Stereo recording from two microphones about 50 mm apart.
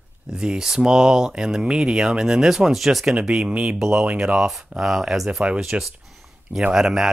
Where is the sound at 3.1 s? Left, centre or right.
Centre.